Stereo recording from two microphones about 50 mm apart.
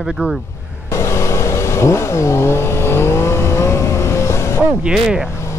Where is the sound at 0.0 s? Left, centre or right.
Centre.